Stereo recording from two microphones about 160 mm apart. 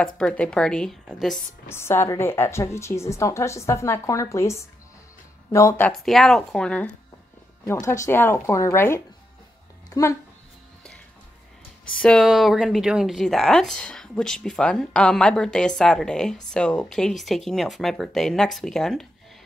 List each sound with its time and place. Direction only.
0.0 s speech: 5° left (ahead or behind)
1.7 s a woman's voice: 15° left (ahead or behind)
5.9 s speech: centre (ahead or behind)
7.8 s a woman's voice: 20° left (ahead or behind)
9.8 s dog: 20° left (ahead or behind)
11.9 s speech: 5° left (ahead or behind)